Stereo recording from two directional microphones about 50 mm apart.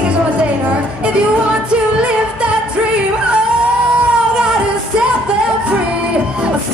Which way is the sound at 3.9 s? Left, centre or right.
Centre.